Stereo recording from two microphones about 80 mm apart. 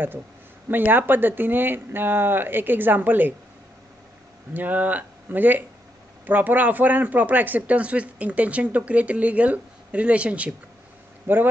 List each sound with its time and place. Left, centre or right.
0.7 s speech: right
4.6 s a man's voice: right
11.3 s speech: right